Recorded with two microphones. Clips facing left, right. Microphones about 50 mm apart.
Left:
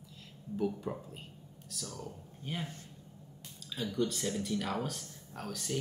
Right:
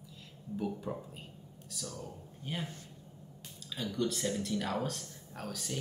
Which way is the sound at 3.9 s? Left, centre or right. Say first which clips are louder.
Even; centre.